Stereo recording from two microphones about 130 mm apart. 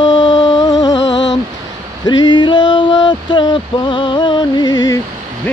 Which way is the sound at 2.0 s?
35° left (ahead or behind).